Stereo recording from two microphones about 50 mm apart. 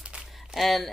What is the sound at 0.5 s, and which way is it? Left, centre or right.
Speech, centre.